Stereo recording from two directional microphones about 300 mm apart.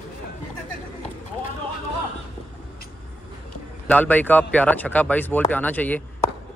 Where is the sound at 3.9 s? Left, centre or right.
Centre.